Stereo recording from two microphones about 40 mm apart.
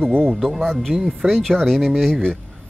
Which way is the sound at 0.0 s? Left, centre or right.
Centre.